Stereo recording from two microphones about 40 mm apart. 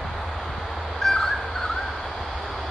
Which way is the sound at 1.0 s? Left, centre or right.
Centre.